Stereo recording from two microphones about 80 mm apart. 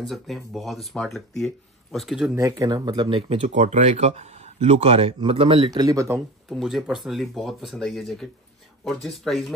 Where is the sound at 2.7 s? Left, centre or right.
Right.